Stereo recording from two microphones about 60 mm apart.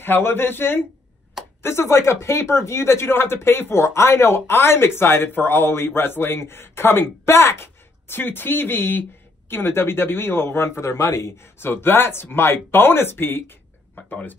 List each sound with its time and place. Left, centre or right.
0.0 s speech: left
10.8 s speech: left
11.6 s speech: left
13.9 s speech: left